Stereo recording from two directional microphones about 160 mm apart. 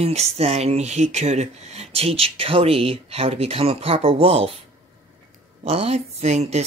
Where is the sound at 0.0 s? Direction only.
40° right (ahead or behind).